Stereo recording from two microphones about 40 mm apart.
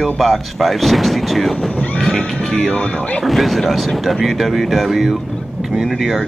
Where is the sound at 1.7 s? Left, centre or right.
Left.